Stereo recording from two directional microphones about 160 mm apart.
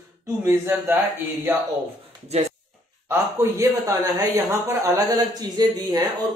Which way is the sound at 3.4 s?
20° right (ahead or behind).